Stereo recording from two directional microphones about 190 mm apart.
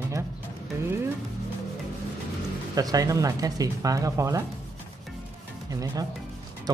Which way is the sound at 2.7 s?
20° right (ahead or behind).